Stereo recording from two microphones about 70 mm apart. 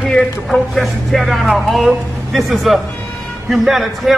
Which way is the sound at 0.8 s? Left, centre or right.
Centre.